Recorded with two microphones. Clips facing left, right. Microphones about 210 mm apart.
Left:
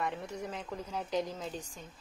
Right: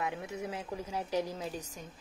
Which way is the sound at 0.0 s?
5° right (ahead or behind).